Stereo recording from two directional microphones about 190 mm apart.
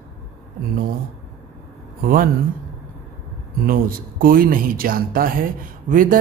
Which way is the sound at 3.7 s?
50° right (ahead or behind).